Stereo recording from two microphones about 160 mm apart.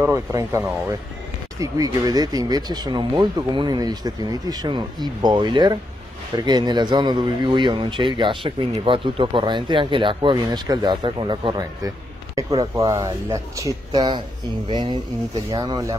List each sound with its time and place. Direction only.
0.0 s speech: 20° right (ahead or behind)